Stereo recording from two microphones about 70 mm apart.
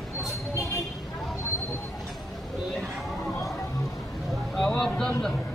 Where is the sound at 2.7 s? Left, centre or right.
Centre.